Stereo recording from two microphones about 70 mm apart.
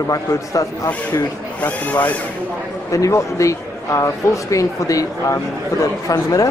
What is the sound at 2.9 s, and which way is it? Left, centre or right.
Speech, left.